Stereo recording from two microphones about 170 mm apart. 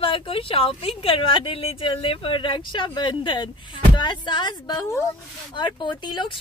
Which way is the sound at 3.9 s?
25° left (ahead or behind).